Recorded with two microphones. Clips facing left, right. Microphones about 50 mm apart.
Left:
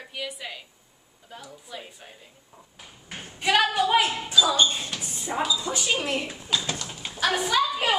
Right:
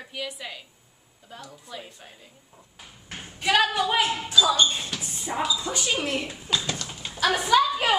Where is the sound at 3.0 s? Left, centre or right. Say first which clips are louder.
Even; centre.